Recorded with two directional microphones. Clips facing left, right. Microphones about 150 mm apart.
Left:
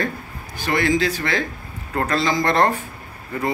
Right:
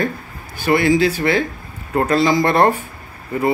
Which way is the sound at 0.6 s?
10° right (ahead or behind).